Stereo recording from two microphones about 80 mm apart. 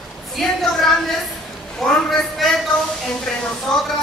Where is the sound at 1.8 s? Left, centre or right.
Centre.